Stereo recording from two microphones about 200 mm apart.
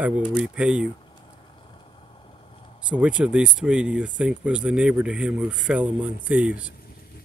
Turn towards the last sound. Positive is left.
turn(degrees=-5)  # may be behind; listen again after turning